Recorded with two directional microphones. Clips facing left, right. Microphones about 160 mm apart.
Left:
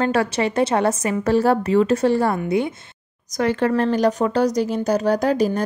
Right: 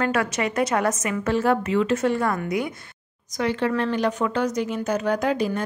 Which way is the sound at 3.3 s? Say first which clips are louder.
Left 4 dB; 45° left (ahead or behind).